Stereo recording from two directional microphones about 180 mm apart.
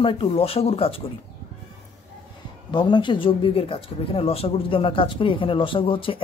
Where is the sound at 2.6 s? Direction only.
25° left (ahead or behind).